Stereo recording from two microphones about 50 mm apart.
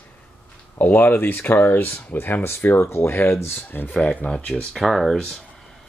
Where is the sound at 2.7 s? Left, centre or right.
Left.